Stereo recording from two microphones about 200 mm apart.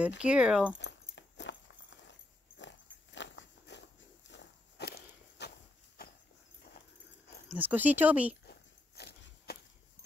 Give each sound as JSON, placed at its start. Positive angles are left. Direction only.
{"t": 0.2, "sound": "speech", "side_deg": -5}
{"t": 1.1, "sound": "a sound", "side_deg": 60}
{"t": 2.6, "sound": "dog", "side_deg": 65}
{"t": 4.3, "sound": "walk", "side_deg": 60}
{"t": 7.4, "sound": "speech", "side_deg": -10}
{"t": 8.5, "sound": "a sound", "side_deg": 55}